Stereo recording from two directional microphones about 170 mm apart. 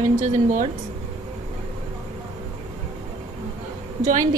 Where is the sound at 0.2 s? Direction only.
45° right (ahead or behind).